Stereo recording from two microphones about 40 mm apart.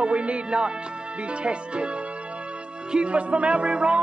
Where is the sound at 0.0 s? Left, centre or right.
Right.